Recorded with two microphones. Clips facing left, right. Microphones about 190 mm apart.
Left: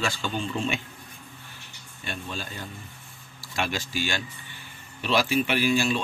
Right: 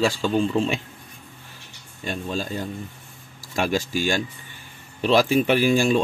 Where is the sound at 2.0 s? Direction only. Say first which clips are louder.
Right 8 dB; 40° right (ahead or behind).